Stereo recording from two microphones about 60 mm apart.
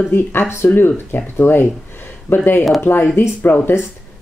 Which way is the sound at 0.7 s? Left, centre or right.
Left.